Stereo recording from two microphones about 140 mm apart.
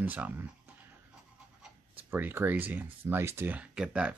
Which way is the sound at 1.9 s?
15° right (ahead or behind).